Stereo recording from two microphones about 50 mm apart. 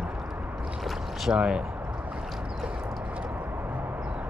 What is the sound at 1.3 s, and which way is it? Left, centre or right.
Speech, centre.